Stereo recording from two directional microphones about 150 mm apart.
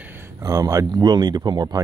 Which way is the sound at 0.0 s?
15° right (ahead or behind).